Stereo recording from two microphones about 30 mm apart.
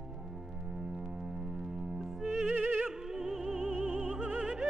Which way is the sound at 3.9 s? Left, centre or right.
Right.